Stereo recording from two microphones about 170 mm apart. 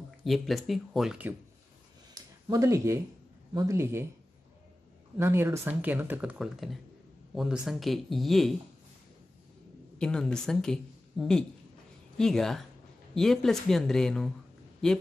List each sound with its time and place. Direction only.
0.2 s speech: centre (ahead or behind)
2.5 s speech: 15° right (ahead or behind)
5.1 s speech: 15° right (ahead or behind)
9.9 s a woman's voice: 5° left (ahead or behind)